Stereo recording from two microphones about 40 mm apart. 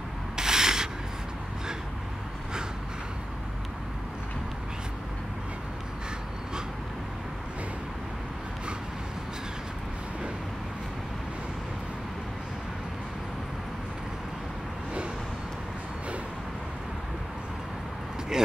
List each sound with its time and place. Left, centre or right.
0.4 s sanding: centre
18.3 s speech: centre